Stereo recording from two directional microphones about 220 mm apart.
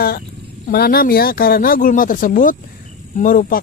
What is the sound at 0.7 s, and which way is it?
Speech, 45° left (ahead or behind).